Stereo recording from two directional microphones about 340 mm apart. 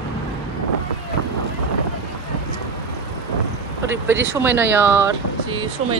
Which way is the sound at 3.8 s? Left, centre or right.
Centre.